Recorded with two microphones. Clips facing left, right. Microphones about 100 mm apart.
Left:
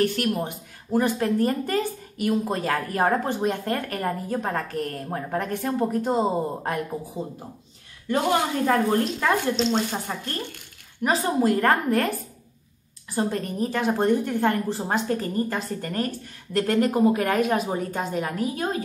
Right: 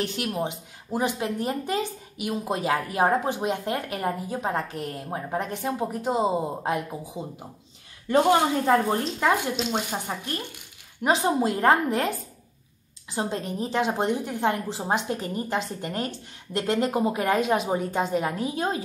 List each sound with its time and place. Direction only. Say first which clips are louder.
0.0 s speech: left 4 dB; 20° right (ahead or behind)
8.1 s a woman's voice: right 3 dB; 25° right (ahead or behind)